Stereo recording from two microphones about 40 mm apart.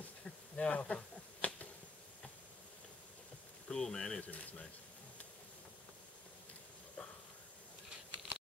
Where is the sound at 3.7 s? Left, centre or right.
Centre.